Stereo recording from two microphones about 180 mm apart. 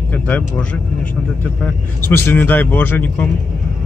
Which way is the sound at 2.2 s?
10° left (ahead or behind).